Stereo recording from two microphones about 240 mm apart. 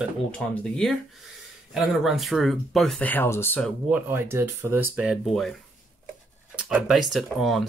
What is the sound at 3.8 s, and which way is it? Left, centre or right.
Speech, centre.